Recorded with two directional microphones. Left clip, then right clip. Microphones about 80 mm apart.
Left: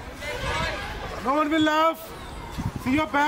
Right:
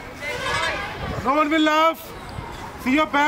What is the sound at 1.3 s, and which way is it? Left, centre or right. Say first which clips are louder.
Speech: right 3 dB; centre.